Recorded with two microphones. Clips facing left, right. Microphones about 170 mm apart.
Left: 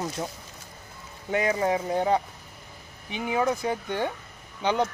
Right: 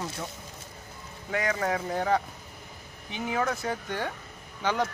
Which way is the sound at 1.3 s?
25° left (ahead or behind).